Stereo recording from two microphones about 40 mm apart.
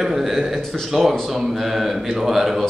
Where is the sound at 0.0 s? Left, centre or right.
Centre.